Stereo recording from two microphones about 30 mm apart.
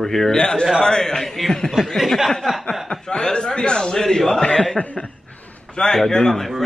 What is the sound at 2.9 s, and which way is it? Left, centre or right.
A man's voice, left.